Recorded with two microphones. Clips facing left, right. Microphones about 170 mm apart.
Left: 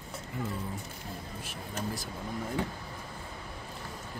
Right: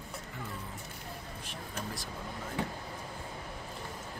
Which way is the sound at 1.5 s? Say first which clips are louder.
Left 4 dB; 5° left (ahead or behind).